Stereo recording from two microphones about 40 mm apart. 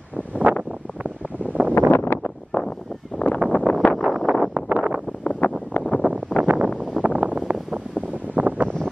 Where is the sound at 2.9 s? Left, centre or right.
Centre.